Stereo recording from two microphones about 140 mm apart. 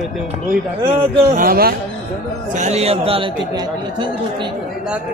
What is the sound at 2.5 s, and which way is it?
Speech, 55° right (ahead or behind).